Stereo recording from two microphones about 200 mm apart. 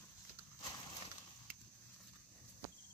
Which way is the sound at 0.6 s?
20° left (ahead or behind).